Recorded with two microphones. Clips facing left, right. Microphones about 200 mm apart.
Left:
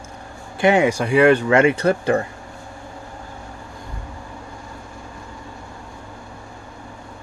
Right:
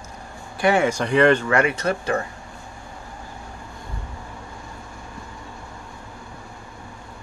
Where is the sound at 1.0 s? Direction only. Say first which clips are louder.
Left 2 dB; 10° left (ahead or behind).